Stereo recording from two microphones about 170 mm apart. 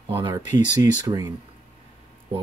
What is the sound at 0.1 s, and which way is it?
Speech, 25° right (ahead or behind).